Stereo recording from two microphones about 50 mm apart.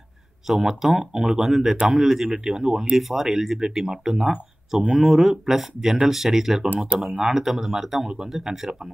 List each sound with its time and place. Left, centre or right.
0.5 s speech: centre